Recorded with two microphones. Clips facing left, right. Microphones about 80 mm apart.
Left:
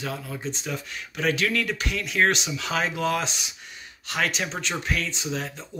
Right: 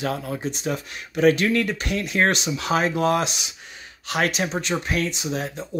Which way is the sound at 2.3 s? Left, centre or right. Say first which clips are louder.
Right 5 dB; right.